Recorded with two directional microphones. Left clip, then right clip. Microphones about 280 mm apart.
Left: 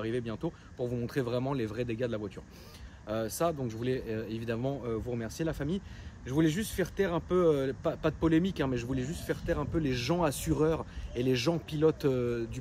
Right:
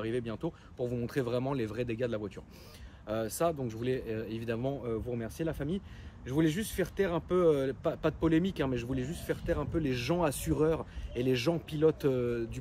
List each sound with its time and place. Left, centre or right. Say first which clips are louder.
0.0 s speech: even; centre